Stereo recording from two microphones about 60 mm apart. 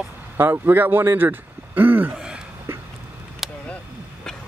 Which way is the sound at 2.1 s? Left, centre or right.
Centre.